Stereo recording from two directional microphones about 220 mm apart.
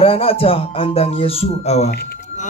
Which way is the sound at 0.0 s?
25° left (ahead or behind).